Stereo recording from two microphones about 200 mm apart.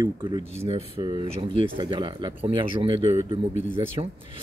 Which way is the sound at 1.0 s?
20° right (ahead or behind).